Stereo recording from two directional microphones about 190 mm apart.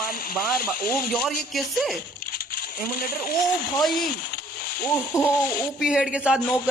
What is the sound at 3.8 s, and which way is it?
Speech, centre (ahead or behind).